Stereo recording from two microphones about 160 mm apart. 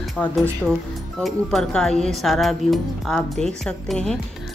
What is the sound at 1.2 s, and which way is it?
Speech, centre (ahead or behind).